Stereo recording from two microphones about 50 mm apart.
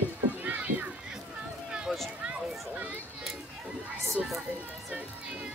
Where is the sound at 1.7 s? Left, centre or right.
Centre.